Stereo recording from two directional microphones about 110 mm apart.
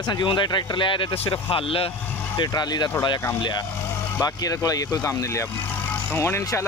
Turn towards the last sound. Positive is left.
turn(degrees=25)  # may be behind; listen again after turning